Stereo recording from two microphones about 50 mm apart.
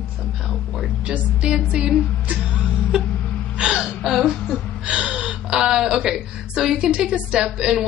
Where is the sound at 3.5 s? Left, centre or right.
Centre.